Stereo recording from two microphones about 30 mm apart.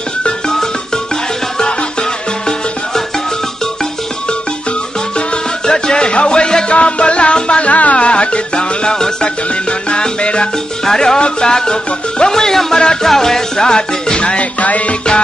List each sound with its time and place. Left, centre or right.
5.7 s music: left
7.7 s music: left
8.0 s music: left
10.9 s salsa music: centre
11.1 s music: left
14.4 s music: left